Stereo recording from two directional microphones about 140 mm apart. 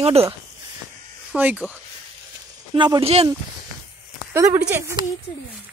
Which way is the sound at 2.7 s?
35° right (ahead or behind).